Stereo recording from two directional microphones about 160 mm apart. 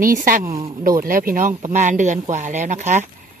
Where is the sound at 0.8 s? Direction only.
60° right (ahead or behind).